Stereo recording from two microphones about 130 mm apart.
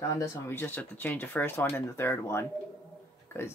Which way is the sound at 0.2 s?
15° left (ahead or behind).